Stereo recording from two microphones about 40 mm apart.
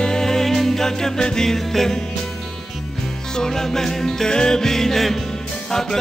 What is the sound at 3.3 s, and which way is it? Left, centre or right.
Music, centre.